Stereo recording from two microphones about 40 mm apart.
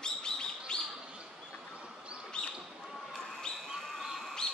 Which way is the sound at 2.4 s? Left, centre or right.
Left.